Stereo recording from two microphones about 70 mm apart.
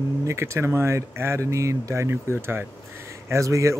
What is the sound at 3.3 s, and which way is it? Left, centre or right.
Speech, right.